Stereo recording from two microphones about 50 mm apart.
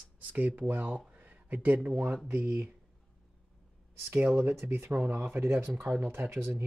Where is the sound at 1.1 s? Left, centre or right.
Right.